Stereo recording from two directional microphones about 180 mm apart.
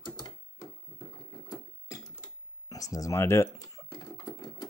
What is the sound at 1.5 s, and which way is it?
Sewing machine, 20° left (ahead or behind).